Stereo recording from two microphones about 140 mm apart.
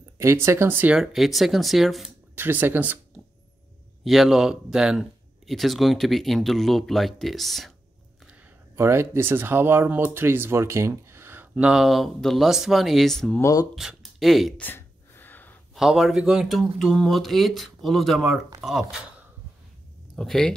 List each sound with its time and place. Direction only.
0.2 s speech: 20° right (ahead or behind)
0.9 s speech: centre (ahead or behind)
2.3 s speech: 15° right (ahead or behind)
4.0 s speech: centre (ahead or behind)
8.2 s a sound: 10° right (ahead or behind)
8.7 s speech: 20° right (ahead or behind); by 13.4 s 5° left (ahead or behind)
13.4 s speech: 25° left (ahead or behind)
13.7 s speech: centre (ahead or behind)
14.6 s sneeze: 15° left (ahead or behind)
15.7 s speech: 5° right (ahead or behind)
20.2 s speech: 5° left (ahead or behind)